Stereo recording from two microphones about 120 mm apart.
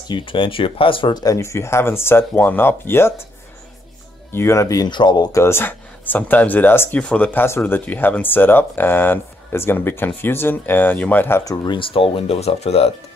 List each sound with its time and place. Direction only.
0.1 s speech: 45° left (ahead or behind); by 3.2 s 20° left (ahead or behind)
4.3 s speech: 20° left (ahead or behind)
5.4 s speech: 20° left (ahead or behind); by 12.9 s 60° left (ahead or behind)